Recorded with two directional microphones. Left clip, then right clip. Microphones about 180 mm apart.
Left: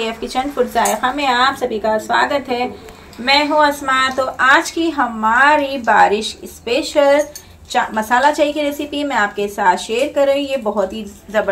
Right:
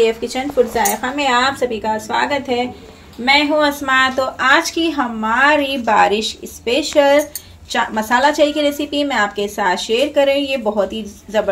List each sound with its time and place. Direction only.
0.0 s a woman's voice: 10° left (ahead or behind)
3.3 s a woman's voice: 15° right (ahead or behind)